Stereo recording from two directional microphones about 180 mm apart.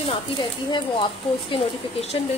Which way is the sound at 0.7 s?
25° left (ahead or behind).